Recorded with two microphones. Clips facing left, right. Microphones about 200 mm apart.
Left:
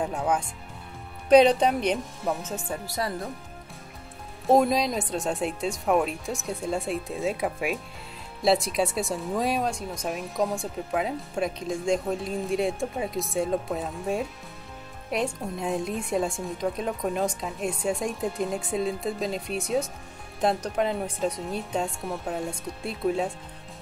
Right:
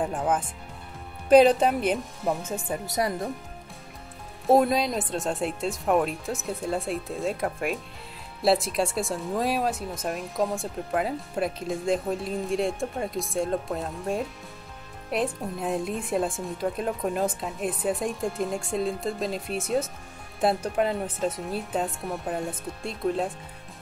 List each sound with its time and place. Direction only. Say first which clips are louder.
0.0 s speech: even; 5° right (ahead or behind)
2.9 s speech: right 4 dB; 20° right (ahead or behind)
4.5 s speech: even; centre (ahead or behind)